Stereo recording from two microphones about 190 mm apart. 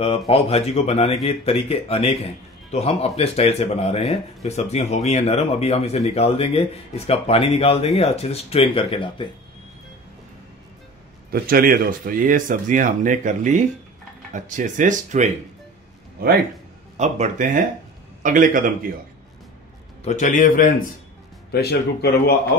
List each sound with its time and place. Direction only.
0.3 s speech: 30° left (ahead or behind)
11.3 s speech: 50° right (ahead or behind)
16.9 s speech: 40° right (ahead or behind)
20.1 s a man's voice: 40° left (ahead or behind)
21.5 s speech: 55° left (ahead or behind)